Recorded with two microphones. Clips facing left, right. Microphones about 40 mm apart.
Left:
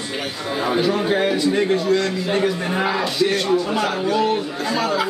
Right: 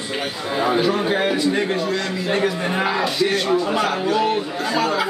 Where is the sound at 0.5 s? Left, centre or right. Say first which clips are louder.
Right 1 dB; centre.